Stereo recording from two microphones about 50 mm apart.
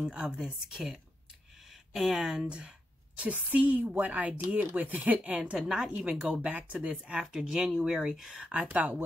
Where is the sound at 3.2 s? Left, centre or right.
Right.